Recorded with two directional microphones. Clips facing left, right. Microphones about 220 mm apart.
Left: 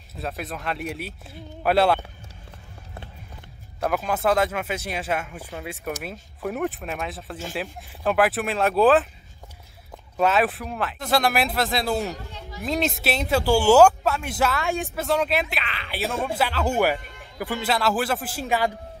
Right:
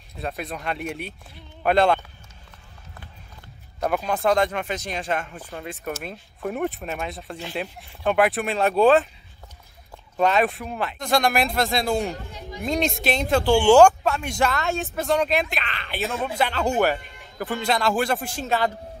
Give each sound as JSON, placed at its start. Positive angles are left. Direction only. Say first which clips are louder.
{"t": 0.1, "sound": "speech", "louder": "right 1 dB", "side_deg": 0}
{"t": 3.8, "sound": "speech", "louder": "right 1 dB", "side_deg": 5}
{"t": 10.1, "sound": "speech", "louder": "right 1 dB", "side_deg": 5}
{"t": 12.1, "sound": "speech", "louder": "right 2 dB", "side_deg": -10}
{"t": 12.6, "sound": "speech", "louder": "right 1 dB", "side_deg": 5}